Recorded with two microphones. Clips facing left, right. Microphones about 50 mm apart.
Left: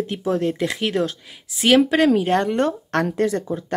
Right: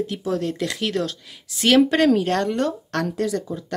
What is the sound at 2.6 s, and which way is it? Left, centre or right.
Speech, left.